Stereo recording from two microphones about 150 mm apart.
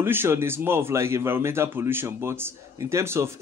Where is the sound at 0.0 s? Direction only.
15° right (ahead or behind).